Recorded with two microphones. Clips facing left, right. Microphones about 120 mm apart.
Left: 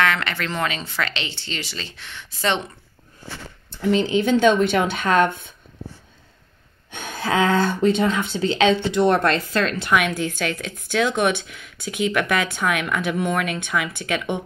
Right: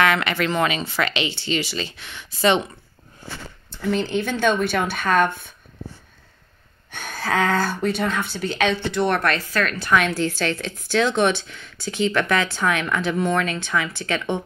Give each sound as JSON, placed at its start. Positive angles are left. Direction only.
{"t": 0.0, "sound": "speech", "side_deg": -10}
{"t": 3.8, "sound": "speech", "side_deg": 15}
{"t": 6.9, "sound": "speech", "side_deg": 20}
{"t": 9.9, "sound": "speech", "side_deg": 10}